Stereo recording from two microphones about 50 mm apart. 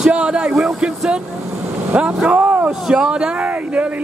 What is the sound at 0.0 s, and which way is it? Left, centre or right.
Speech, centre.